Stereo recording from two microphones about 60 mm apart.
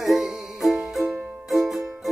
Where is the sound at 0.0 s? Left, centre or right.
Centre.